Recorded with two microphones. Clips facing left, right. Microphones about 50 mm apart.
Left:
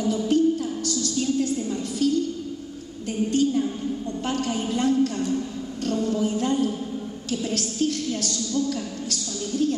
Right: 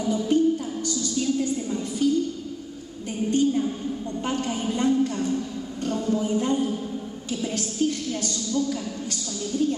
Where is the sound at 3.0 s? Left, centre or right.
Left.